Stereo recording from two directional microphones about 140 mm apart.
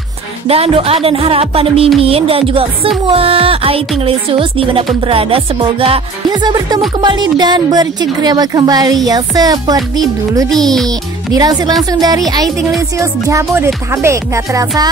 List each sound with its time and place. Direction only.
0.5 s speech: 45° right (ahead or behind)
3.1 s music: 40° right (ahead or behind)
7.0 s speech: 30° right (ahead or behind)
10.5 s speech: centre (ahead or behind)
10.9 s speech: 25° right (ahead or behind)